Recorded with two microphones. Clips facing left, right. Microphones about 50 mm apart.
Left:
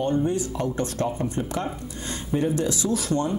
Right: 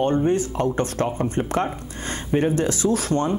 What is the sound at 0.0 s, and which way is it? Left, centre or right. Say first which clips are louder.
Speech: right 4 dB; right.